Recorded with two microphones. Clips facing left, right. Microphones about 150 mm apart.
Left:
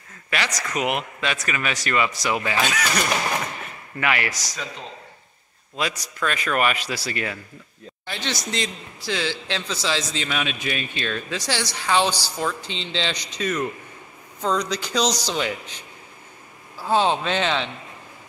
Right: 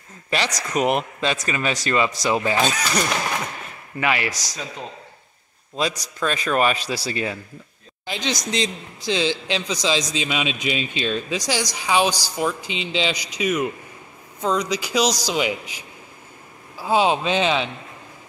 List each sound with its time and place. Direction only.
0.3 s speech: 30° right (ahead or behind)
4.0 s speech: 20° right (ahead or behind)
4.3 s a man's voice: 10° right (ahead or behind)
6.2 s speech: 25° right (ahead or behind)
8.1 s a man's voice: 15° right (ahead or behind)